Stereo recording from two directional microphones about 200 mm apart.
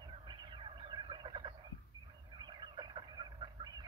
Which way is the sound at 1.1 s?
25° right (ahead or behind).